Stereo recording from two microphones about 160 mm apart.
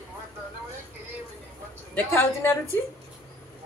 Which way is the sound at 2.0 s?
15° left (ahead or behind).